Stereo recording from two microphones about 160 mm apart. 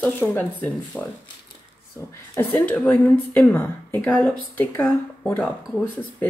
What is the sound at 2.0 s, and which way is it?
A woman's voice, 20° left (ahead or behind).